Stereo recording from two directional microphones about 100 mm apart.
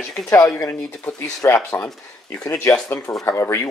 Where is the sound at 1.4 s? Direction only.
25° left (ahead or behind).